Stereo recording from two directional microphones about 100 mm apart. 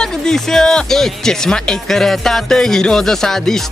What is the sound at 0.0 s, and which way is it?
Speech, 5° left (ahead or behind).